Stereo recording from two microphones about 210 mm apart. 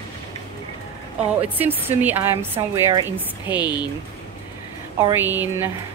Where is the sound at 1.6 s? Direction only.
10° right (ahead or behind).